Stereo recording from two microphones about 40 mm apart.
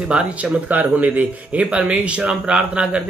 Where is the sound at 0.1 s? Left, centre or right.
Right.